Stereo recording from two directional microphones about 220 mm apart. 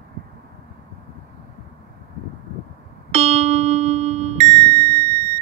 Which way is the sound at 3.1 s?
30° right (ahead or behind).